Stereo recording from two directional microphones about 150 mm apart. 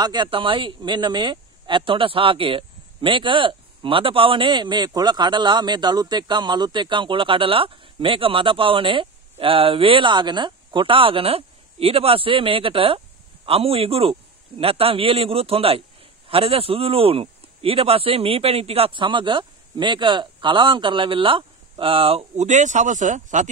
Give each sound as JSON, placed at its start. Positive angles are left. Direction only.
{"t": 0.0, "sound": "speech", "side_deg": -30}